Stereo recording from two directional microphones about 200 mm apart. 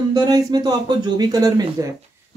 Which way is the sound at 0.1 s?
20° right (ahead or behind).